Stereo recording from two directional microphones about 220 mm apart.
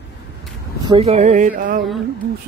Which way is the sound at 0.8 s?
25° right (ahead or behind).